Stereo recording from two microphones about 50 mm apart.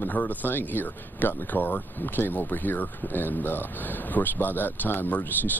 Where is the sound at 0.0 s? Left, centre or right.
Left.